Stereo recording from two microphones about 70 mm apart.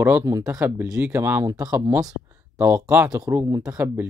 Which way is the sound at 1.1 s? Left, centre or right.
Right.